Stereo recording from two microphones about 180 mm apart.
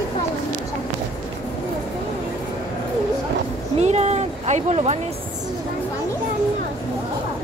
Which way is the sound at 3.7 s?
35° right (ahead or behind).